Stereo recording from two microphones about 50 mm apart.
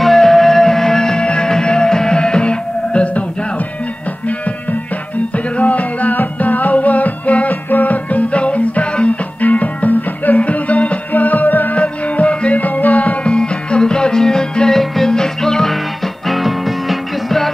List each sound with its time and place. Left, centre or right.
0.0 s music: centre; by 3.3 s left
5.3 s music: left
11.8 s music: left
13.3 s music: centre